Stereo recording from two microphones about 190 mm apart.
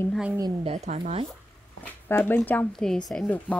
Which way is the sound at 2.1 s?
10° left (ahead or behind).